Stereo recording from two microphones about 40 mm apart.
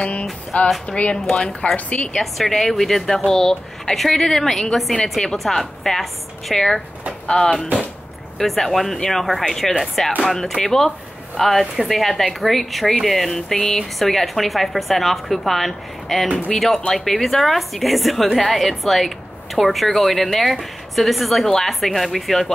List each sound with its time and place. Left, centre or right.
0.0 s a woman's voice: left
2.1 s a woman's voice: centre
8.4 s a woman's voice: centre
9.5 s a woman's voice: centre